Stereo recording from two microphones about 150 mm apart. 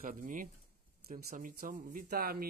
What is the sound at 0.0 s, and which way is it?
Speech, 60° right (ahead or behind).